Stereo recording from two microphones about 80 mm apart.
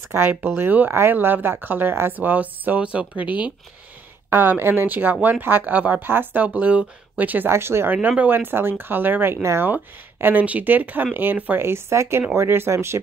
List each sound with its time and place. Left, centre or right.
0.1 s speech: right
4.3 s speech: right
10.2 s speech: centre
11.6 s speech: right